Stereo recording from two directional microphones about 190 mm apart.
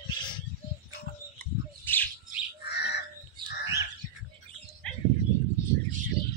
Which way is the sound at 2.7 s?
60° left (ahead or behind).